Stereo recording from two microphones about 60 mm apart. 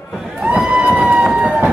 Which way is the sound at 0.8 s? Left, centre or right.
Right.